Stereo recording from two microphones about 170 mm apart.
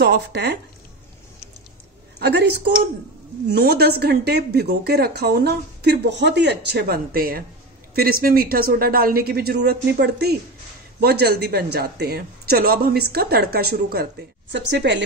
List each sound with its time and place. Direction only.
0.0 s speech: 80° right
2.1 s a woman's voice: 80° right
14.5 s a woman's voice: 90° right